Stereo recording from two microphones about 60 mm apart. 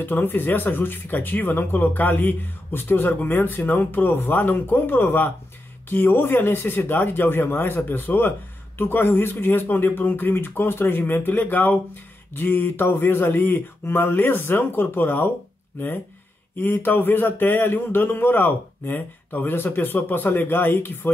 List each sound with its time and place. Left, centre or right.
0.0 s speech: left
16.5 s speech: left